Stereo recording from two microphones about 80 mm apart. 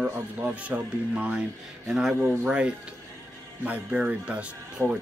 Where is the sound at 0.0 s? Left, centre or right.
Centre.